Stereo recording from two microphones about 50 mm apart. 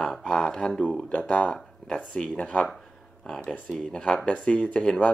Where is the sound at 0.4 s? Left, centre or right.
Centre.